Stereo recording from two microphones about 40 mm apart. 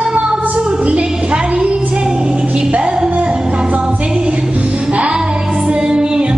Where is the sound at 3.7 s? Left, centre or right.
Right.